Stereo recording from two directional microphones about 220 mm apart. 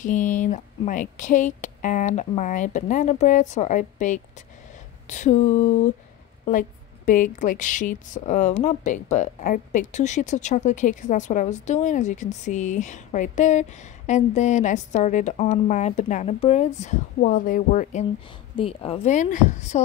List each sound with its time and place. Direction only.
0.0 s speech: 35° left (ahead or behind)
7.1 s speech: 35° left (ahead or behind)
18.6 s speech: 25° left (ahead or behind)